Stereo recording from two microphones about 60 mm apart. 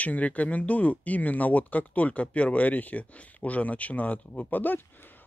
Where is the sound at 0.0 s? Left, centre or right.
Left.